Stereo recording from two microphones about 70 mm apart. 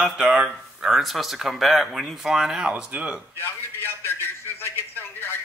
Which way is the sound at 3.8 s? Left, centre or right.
Left.